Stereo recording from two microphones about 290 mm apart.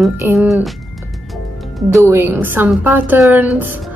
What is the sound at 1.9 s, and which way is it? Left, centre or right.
A woman's voice, centre.